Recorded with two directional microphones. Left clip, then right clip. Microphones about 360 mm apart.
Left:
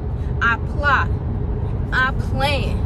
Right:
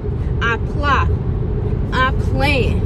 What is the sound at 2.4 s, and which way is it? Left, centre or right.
Speech, left.